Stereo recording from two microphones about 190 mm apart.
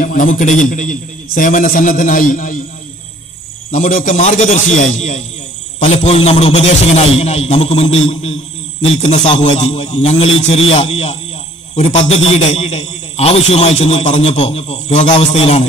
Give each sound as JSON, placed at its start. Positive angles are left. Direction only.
{"t": 0.0, "sound": "a man's voice", "side_deg": 45}
{"t": 3.7, "sound": "a man's voice", "side_deg": 45}